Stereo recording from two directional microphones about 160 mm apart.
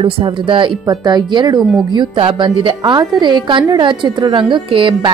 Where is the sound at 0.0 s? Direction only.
30° right (ahead or behind).